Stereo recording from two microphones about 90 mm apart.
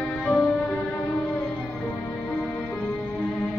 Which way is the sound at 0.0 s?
5° left (ahead or behind).